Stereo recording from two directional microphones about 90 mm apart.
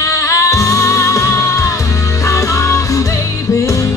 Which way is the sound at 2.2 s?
35° left (ahead or behind).